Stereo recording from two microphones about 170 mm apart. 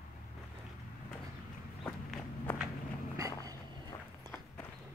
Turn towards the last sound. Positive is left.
turn(degrees=-20)  # may be behind; listen again after turning